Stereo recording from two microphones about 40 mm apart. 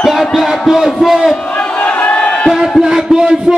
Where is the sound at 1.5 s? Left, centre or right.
Left.